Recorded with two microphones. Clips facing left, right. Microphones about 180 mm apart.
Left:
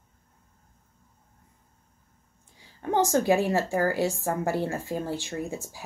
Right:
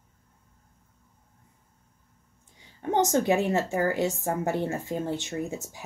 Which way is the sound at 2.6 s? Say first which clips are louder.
Even; 20° right (ahead or behind).